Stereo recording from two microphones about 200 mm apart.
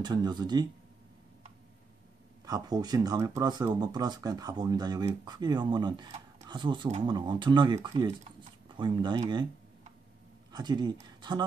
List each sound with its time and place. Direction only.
0.0 s speech: 20° right (ahead or behind)
2.4 s speech: 20° right (ahead or behind)
10.5 s speech: 20° right (ahead or behind)